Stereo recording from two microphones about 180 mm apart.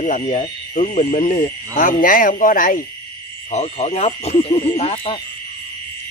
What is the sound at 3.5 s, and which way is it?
Speech, 35° left (ahead or behind).